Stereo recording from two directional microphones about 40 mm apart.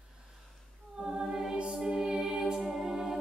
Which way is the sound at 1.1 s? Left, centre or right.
Centre.